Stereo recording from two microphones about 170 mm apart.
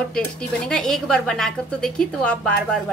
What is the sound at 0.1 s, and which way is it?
Speech, 5° left (ahead or behind).